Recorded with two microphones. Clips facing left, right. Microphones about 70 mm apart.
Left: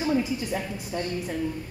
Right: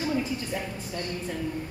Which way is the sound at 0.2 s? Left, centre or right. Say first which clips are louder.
Left 2 dB; centre.